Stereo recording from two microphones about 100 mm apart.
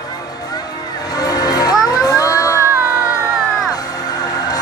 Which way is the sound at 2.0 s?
35° left (ahead or behind).